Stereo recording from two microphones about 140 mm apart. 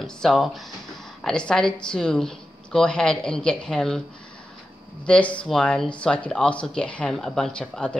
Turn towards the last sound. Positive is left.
turn(degrees=5)  # may be behind; listen again after turning